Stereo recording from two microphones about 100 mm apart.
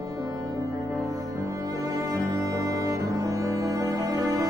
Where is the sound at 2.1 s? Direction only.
35° right (ahead or behind).